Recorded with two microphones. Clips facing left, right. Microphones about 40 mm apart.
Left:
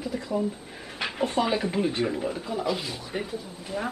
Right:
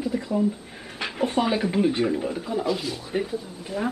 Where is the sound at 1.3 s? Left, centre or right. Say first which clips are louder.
Right 3 dB; centre.